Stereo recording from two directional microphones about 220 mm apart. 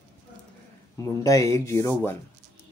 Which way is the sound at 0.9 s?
15° left (ahead or behind).